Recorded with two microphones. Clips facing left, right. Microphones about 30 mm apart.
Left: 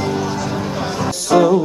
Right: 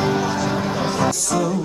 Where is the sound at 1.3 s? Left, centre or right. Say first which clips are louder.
Left 9 dB; left.